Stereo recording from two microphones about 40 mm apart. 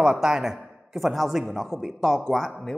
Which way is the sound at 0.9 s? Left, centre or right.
Centre.